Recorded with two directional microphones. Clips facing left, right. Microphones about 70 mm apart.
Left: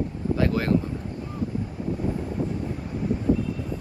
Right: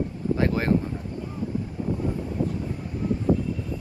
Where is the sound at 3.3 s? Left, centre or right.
Right.